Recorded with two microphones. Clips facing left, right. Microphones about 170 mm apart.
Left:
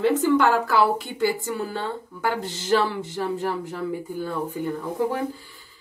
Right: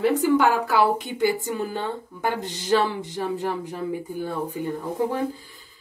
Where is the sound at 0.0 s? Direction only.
15° right (ahead or behind).